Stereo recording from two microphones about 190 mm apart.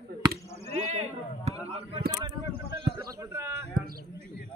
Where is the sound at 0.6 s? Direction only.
35° right (ahead or behind); by 3.6 s 15° right (ahead or behind).